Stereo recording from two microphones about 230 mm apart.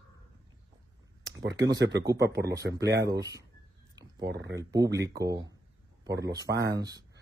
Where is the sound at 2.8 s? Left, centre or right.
Right.